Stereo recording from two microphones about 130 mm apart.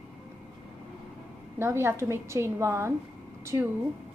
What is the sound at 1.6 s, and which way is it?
A woman's voice, 20° right (ahead or behind).